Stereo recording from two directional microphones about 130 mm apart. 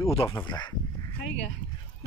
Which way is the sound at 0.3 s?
30° left (ahead or behind).